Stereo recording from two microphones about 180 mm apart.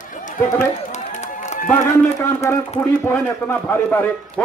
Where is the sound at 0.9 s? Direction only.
40° left (ahead or behind).